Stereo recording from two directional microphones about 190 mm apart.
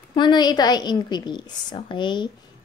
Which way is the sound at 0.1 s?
25° left (ahead or behind).